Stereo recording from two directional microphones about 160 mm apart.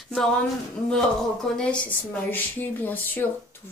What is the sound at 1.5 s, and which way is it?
Speech, 5° left (ahead or behind).